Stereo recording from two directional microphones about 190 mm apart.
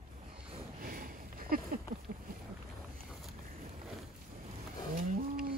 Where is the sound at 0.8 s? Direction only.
50° right (ahead or behind).